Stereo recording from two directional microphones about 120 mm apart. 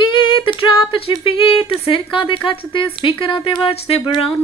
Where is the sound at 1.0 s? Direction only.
45° left (ahead or behind).